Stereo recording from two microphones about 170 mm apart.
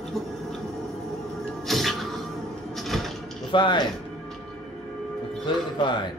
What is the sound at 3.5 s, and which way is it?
Speech, 25° left (ahead or behind).